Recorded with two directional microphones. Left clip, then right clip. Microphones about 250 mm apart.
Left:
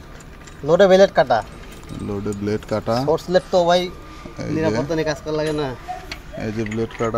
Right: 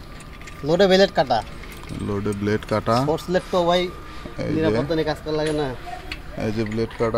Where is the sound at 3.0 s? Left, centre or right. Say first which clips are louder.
Left 4 dB; centre.